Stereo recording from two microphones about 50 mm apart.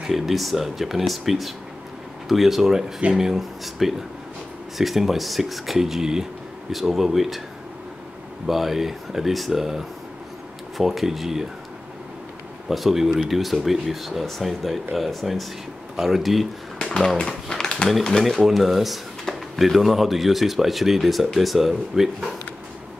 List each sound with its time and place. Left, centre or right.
0.1 s speech: centre
8.5 s speech: centre
12.6 s speech: centre
16.7 s a sound: centre
18.2 s speech: centre